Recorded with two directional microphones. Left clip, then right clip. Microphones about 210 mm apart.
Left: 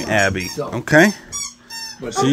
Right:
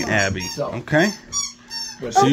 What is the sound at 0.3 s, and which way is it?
Speech, 35° left (ahead or behind).